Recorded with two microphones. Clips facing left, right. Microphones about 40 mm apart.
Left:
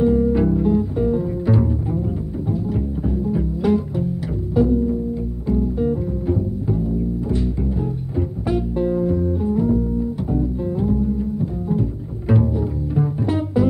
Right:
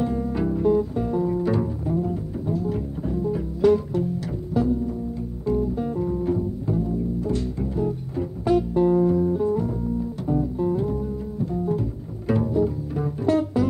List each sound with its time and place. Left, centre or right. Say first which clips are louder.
0.0 s music: left 8 dB; centre
12.3 s pizzicato: left 1 dB; centre